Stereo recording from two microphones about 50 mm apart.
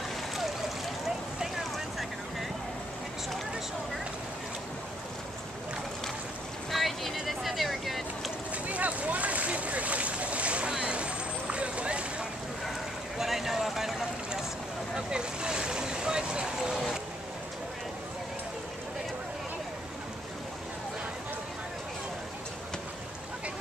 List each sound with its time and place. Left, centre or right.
6.7 s boat: centre
7.2 s a sound: centre
8.6 s boat: right
13.2 s vehicle: centre
15.0 s vehicle: centre